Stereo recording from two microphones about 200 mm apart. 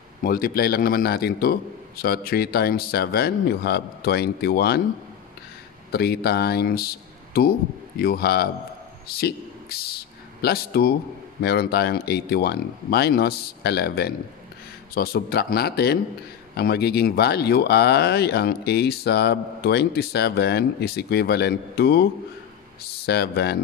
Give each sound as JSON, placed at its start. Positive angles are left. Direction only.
{"t": 0.2, "sound": "speech", "side_deg": 45}
{"t": 5.9, "sound": "a man's voice", "side_deg": 50}
{"t": 23.0, "sound": "speech", "side_deg": 55}